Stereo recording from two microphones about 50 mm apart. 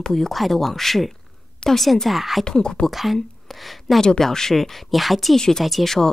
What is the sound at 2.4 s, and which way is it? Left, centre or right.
Speech, centre.